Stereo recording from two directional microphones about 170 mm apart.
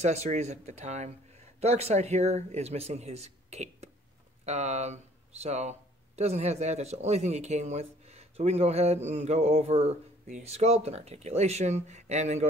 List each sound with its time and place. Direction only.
0.0 s speech: 40° right (ahead or behind)